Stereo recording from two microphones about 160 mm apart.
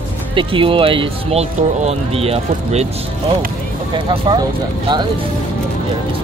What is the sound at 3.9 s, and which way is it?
Speech, 30° right (ahead or behind).